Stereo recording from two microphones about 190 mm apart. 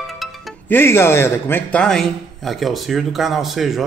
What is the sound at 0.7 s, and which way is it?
Speech, 15° left (ahead or behind).